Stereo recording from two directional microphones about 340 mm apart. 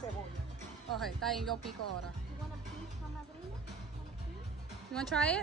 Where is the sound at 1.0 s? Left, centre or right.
Centre.